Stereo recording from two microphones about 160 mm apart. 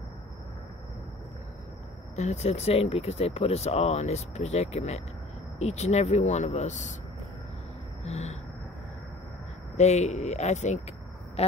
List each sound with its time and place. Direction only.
2.1 s speech: 45° left (ahead or behind)
8.0 s cricket: 40° left (ahead or behind)
9.8 s speech: 45° left (ahead or behind)